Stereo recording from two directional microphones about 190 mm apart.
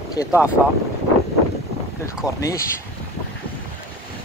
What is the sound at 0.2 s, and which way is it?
Speech, 15° left (ahead or behind).